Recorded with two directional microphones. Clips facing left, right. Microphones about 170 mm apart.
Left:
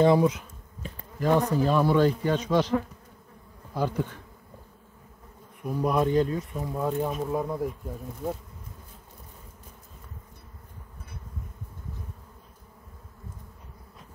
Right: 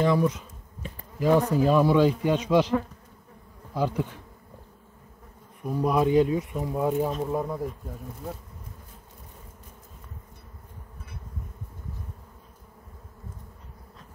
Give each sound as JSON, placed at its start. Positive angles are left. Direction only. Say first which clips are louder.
{"t": 0.0, "sound": "bee", "louder": "left 3 dB", "side_deg": 30}
{"t": 1.2, "sound": "speech", "louder": "right 2 dB", "side_deg": -5}
{"t": 3.7, "sound": "speech", "louder": "right 1 dB", "side_deg": -5}
{"t": 5.8, "sound": "speech", "louder": "right 2 dB", "side_deg": 0}
{"t": 7.1, "sound": "speech", "louder": "right 1 dB", "side_deg": 5}